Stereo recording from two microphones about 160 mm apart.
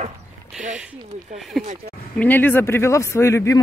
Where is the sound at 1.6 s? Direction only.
Centre (ahead or behind).